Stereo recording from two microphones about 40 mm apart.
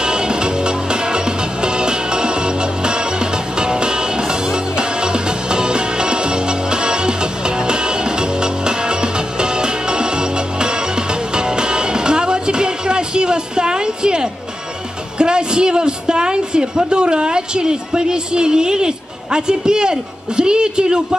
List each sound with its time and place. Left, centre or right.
0.0 s music: right
15.1 s a woman's voice: right